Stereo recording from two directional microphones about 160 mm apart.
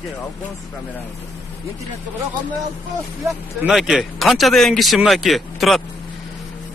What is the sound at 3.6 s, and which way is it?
Speech, centre (ahead or behind).